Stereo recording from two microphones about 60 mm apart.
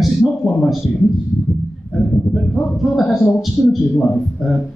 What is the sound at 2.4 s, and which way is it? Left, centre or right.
Speech, centre.